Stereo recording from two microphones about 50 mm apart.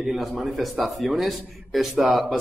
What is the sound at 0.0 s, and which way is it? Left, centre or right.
A man's voice, centre.